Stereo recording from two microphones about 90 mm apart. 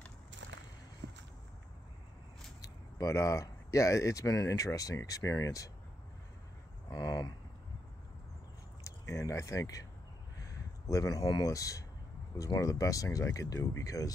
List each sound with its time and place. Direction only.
3.0 s speech: 35° left (ahead or behind)
7.1 s speech: 45° left (ahead or behind)
8.8 s speech: 35° left (ahead or behind)